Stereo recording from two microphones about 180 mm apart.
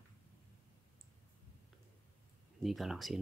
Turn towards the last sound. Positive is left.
turn(degrees=0)  # may be behind; listen again after turning